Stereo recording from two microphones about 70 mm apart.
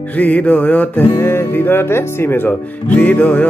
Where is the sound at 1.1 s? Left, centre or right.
Left.